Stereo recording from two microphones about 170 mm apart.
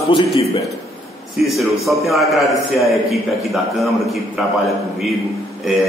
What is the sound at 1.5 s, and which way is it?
A man's voice, centre (ahead or behind).